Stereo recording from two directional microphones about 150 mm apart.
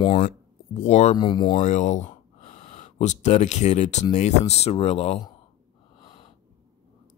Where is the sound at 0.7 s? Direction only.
50° left (ahead or behind).